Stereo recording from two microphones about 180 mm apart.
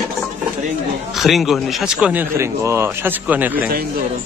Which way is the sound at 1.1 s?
Centre (ahead or behind).